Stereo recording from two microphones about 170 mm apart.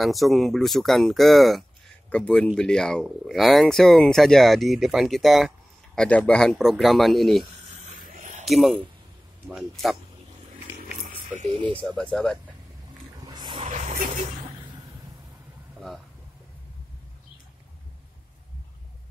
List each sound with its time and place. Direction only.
0.0 s speech: centre (ahead or behind)
7.7 s a sound: 45° right (ahead or behind)
8.5 s speech: centre (ahead or behind)
11.3 s speech: 35° right (ahead or behind)
12.0 s speech: 5° left (ahead or behind)
13.2 s roaring cats: 25° right (ahead or behind)
13.7 s vehicle: 45° right (ahead or behind)